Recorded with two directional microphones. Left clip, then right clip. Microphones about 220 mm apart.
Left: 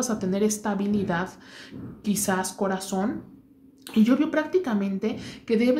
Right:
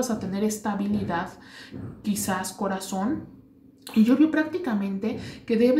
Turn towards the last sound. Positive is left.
turn(degrees=40)  # may be behind; listen again after turning